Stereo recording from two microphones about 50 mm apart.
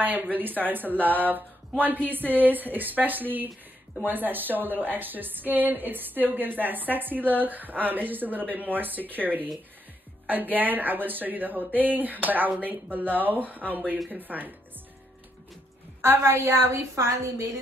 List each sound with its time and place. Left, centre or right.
0.0 s a woman's voice: right
16.0 s a woman's voice: right